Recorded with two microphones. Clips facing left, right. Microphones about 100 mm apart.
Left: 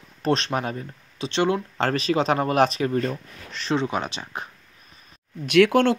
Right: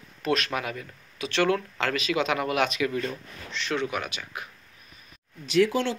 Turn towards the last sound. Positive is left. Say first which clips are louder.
# left 6 dB
turn(degrees=60)  # may be behind; listen again after turning